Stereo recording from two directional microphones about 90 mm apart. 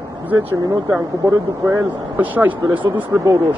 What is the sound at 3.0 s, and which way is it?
Speech, 35° right (ahead or behind).